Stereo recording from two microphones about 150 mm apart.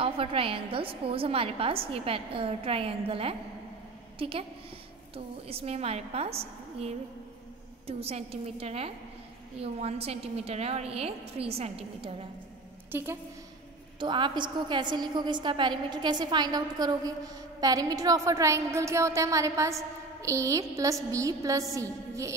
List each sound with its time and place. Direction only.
0.0 s a woman's voice: 40° right (ahead or behind)
12.9 s a woman's voice: 15° right (ahead or behind)
13.9 s a woman's voice: 30° right (ahead or behind)